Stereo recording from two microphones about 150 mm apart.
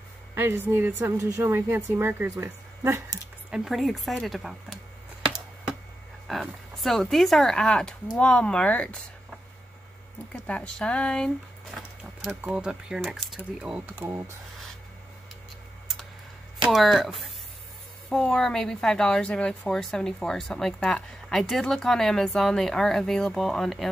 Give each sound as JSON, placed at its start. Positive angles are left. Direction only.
{"t": 0.3, "sound": "a woman's voice", "side_deg": -15}
{"t": 3.4, "sound": "speech", "side_deg": -5}
{"t": 6.2, "sound": "speech", "side_deg": 0}
{"t": 10.3, "sound": "a sound", "side_deg": 10}
{"t": 12.4, "sound": "speech", "side_deg": -5}
{"t": 13.9, "sound": "a woman's voice", "side_deg": -15}
{"t": 15.9, "sound": "tick-tock", "side_deg": 0}
{"t": 16.6, "sound": "speech", "side_deg": 0}